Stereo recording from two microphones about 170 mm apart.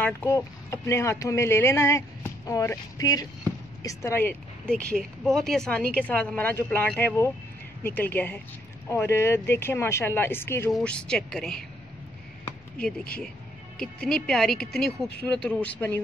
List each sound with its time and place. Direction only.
0.0 s speech: 15° left (ahead or behind)
13.7 s speech: 5° left (ahead or behind)